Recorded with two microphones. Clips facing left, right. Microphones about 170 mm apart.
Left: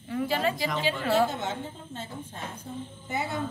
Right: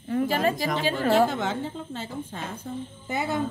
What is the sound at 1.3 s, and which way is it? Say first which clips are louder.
A woman's voice: right 5 dB; 90° right.